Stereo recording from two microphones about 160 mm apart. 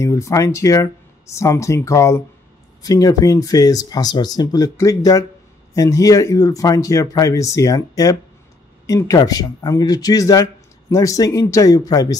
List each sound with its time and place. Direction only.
0.0 s speech: 20° left (ahead or behind)